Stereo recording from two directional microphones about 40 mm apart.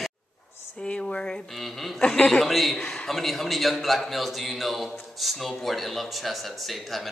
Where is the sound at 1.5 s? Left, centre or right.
Centre.